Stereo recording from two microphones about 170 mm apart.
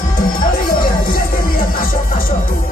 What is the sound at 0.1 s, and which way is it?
Music, 55° left (ahead or behind).